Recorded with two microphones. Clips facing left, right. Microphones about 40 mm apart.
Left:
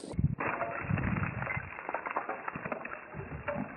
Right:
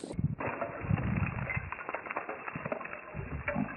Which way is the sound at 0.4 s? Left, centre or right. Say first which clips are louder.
Left 2 dB; centre.